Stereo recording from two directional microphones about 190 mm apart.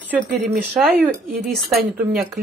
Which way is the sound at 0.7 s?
Centre (ahead or behind).